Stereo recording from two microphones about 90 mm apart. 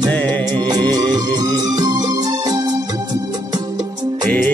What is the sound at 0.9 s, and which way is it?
Music, 50° right (ahead or behind).